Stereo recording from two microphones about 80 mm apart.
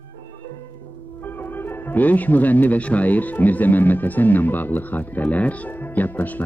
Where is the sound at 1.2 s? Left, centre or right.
Left.